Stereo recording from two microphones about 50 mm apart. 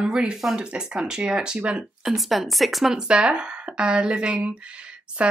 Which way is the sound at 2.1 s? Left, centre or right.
Centre.